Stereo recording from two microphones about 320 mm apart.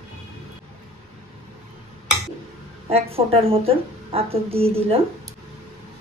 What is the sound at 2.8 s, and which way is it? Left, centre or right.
A woman's voice, centre.